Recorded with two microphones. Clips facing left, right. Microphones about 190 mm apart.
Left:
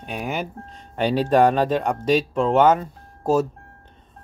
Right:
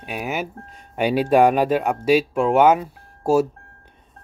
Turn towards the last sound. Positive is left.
turn(degrees=-10)  # may be behind; listen again after turning